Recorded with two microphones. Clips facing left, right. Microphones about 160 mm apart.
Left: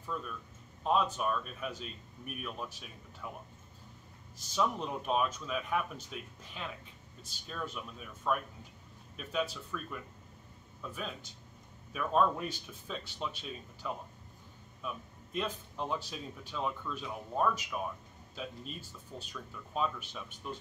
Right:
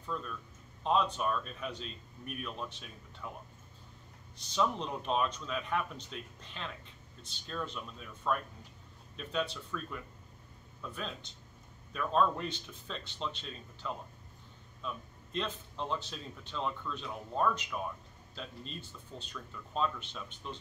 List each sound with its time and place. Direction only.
0.0 s a man's voice: 5° left (ahead or behind)
4.4 s a man's voice: 5° left (ahead or behind)